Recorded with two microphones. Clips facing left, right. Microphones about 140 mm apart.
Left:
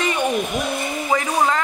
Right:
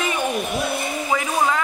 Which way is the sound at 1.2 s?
5° right (ahead or behind).